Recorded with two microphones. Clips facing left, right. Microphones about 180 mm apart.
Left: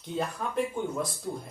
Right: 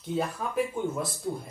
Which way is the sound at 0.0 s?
5° right (ahead or behind).